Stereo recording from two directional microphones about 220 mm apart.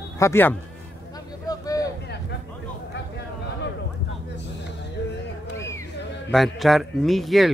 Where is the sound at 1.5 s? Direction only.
15° left (ahead or behind).